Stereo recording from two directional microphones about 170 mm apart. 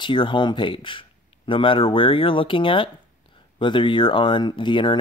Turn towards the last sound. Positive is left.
turn(degrees=30)  # may be behind; listen again after turning